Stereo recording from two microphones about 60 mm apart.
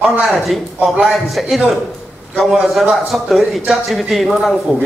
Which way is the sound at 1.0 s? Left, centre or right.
Centre.